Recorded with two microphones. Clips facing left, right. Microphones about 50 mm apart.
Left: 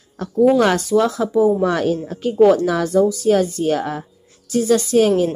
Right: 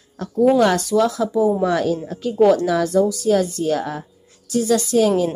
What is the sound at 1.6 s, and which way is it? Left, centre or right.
Speech, left.